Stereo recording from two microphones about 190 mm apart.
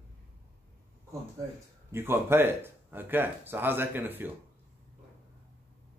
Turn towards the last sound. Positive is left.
turn(degrees=-10)  # may be behind; listen again after turning